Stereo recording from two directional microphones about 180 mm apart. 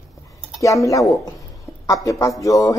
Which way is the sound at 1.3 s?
20° left (ahead or behind).